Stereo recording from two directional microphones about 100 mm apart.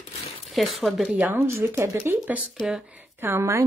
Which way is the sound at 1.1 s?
20° right (ahead or behind).